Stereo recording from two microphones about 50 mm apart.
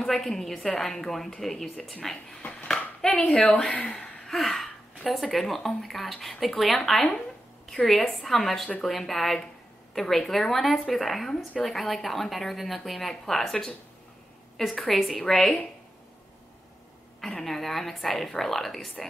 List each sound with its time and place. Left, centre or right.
0.0 s a woman's voice: centre
2.7 s a sound: centre
3.3 s a woman's voice: left
4.3 s a woman's voice: centre
14.8 s a woman's voice: centre
17.2 s a woman's voice: centre